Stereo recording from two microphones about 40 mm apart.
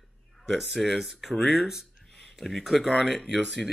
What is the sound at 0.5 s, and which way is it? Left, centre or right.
Speech, centre.